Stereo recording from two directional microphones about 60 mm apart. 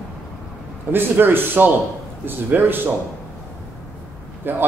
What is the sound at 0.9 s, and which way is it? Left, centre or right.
A man's voice, right.